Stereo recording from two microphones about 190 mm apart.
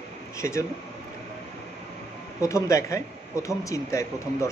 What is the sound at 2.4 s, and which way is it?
Speech, 15° left (ahead or behind).